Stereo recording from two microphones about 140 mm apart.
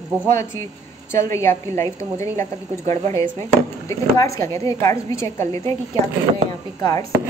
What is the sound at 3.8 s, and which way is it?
A woman's voice, 25° left (ahead or behind).